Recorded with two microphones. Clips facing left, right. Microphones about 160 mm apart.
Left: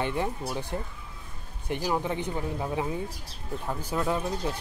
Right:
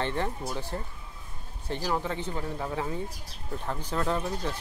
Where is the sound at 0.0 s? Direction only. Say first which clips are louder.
Left 1 dB; 10° left (ahead or behind).